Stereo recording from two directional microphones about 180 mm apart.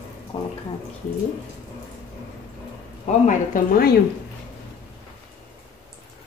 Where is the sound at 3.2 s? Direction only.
50° left (ahead or behind).